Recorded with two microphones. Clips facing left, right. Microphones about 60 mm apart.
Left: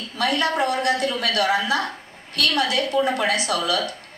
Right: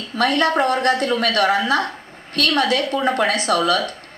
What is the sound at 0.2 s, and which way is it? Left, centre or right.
A woman's voice, right.